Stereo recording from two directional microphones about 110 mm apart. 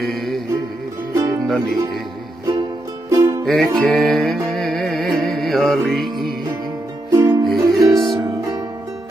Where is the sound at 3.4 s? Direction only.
Centre (ahead or behind).